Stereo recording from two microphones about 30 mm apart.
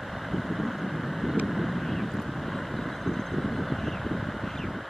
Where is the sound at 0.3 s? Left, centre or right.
Centre.